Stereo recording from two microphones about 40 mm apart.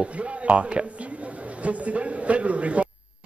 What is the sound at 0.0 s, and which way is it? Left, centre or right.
A man's voice, right.